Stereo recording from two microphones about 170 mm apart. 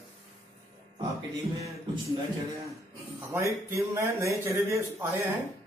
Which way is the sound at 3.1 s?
15° right (ahead or behind).